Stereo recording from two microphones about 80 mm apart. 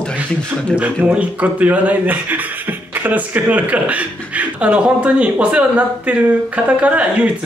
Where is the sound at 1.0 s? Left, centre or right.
Centre.